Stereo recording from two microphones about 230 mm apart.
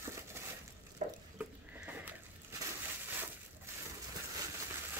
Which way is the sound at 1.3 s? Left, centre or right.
Centre.